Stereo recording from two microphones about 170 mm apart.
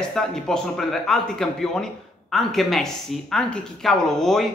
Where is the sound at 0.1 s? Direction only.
5° left (ahead or behind).